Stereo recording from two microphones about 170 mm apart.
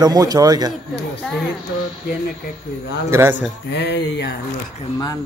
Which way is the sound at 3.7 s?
85° left.